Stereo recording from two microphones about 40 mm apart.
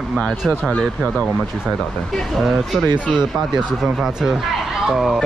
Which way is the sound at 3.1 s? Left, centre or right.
Centre.